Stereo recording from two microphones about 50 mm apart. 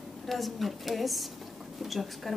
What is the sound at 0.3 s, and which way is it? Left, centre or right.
A woman's voice, centre.